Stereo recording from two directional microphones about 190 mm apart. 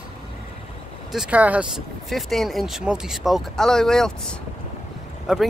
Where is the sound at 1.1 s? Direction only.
5° right (ahead or behind).